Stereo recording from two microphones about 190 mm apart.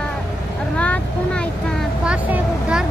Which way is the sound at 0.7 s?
5° left (ahead or behind).